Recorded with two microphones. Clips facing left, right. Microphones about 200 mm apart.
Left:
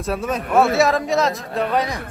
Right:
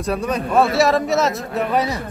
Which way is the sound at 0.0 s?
Centre (ahead or behind).